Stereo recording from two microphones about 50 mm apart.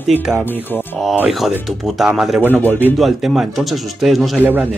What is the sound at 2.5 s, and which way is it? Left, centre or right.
Speech, left.